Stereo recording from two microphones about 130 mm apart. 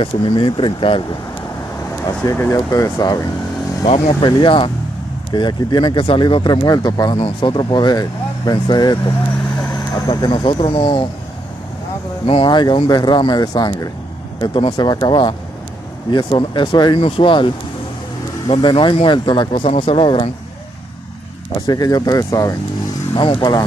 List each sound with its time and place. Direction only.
0.0 s speech: 40° left (ahead or behind)
2.3 s speech: 20° left (ahead or behind)
4.2 s speech: 35° left (ahead or behind)
10.0 s speech: 35° left (ahead or behind)
12.3 s speech: 40° left (ahead or behind)
18.5 s speech: 40° left (ahead or behind)
21.5 s speech: 30° left (ahead or behind)